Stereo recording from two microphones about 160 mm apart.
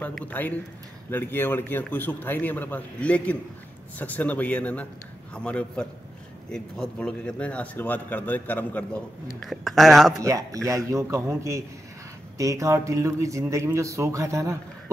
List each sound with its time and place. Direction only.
0.0 s a man's voice: 10° left (ahead or behind)
10.2 s speech: 20° right (ahead or behind)